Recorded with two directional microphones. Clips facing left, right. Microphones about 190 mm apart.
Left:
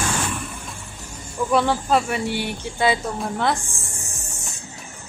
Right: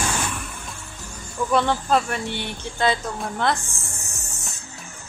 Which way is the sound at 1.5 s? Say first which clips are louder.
Left 1 dB; 5° left (ahead or behind).